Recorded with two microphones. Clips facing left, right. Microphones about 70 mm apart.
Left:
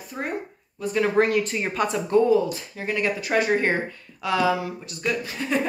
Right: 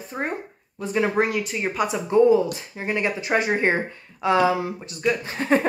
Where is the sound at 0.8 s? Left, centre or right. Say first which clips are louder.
Left 1 dB; centre.